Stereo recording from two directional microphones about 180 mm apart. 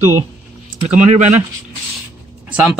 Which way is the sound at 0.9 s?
40° right (ahead or behind).